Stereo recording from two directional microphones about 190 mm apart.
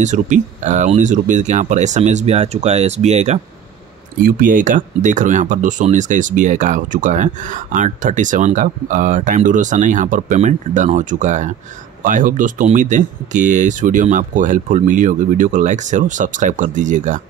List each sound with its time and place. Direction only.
0.0 s speech: 40° right (ahead or behind)
4.2 s speech: 45° right (ahead or behind)